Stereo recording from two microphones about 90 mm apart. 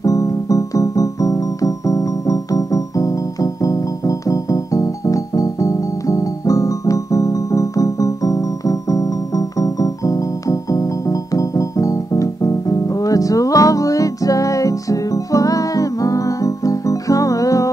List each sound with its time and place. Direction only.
0.0 s music: 40° left (ahead or behind)